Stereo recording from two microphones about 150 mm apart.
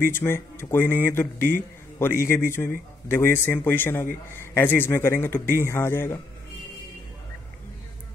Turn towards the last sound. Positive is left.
turn(degrees=15)  # may be behind; listen again after turning